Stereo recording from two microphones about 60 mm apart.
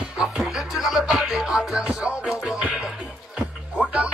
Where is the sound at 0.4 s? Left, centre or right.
Centre.